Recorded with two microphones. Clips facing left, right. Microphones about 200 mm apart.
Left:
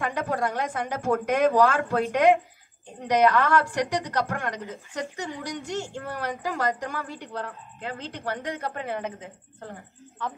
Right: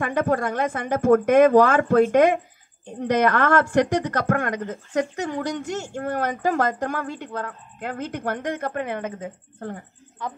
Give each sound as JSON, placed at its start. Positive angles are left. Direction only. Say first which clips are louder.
{"t": 0.0, "sound": "a woman's voice", "louder": "right 5 dB", "side_deg": -50}
{"t": 10.2, "sound": "speech", "louder": "right 1 dB", "side_deg": -10}